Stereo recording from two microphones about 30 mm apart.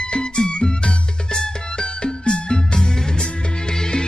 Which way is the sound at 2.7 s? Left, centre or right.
Centre.